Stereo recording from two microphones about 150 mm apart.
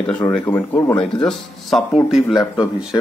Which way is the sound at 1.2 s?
Centre (ahead or behind).